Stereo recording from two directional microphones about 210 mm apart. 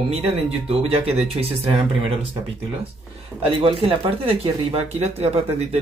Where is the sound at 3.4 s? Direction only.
25° right (ahead or behind).